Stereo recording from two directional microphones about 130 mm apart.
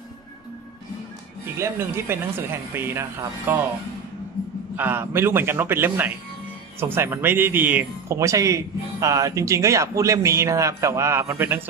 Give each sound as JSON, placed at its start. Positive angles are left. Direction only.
{"t": 1.6, "sound": "speech", "side_deg": -20}
{"t": 4.7, "sound": "speech", "side_deg": -15}